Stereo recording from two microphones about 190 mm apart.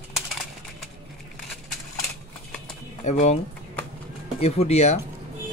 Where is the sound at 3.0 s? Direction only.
35° left (ahead or behind).